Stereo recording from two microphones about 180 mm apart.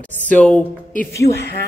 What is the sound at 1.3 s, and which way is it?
Speech, 35° left (ahead or behind).